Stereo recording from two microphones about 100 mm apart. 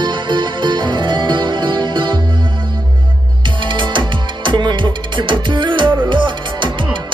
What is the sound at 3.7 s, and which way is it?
Music, 55° right (ahead or behind).